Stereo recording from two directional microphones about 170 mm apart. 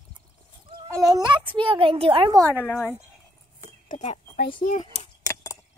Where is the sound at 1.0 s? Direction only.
25° right (ahead or behind).